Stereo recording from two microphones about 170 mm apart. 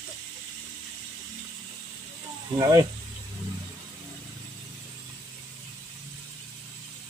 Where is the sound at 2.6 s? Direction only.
20° right (ahead or behind).